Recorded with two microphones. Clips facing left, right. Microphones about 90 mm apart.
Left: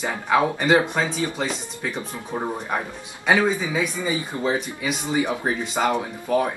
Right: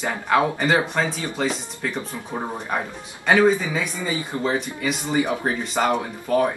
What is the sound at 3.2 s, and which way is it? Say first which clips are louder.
Speech: right 3 dB; centre (ahead or behind).